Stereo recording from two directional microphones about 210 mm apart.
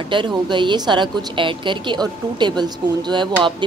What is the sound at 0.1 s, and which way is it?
Speech, 20° right (ahead or behind).